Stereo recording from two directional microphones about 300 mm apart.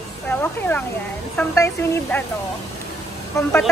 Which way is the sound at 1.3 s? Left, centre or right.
Centre.